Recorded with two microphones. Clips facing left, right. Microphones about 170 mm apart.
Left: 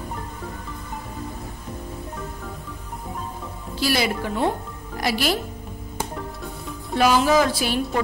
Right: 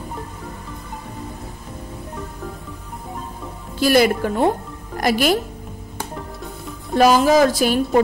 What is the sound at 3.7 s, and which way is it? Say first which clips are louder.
A woman's voice: right 8 dB; 50° right (ahead or behind).